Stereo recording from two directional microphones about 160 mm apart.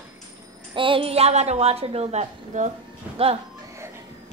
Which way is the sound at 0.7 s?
30° right (ahead or behind).